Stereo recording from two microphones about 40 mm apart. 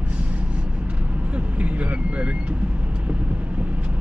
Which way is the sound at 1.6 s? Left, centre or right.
Right.